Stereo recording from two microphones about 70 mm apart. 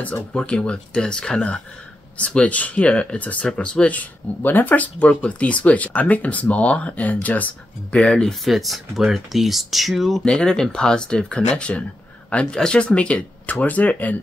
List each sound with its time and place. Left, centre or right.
0.0 s speech: centre
8.5 s speech: centre
10.2 s speech: centre